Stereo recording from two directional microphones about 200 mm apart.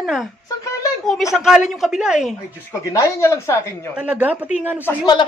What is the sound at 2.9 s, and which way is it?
Speech, 15° left (ahead or behind).